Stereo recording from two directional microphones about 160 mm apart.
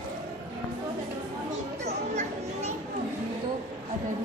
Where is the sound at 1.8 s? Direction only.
45° right (ahead or behind).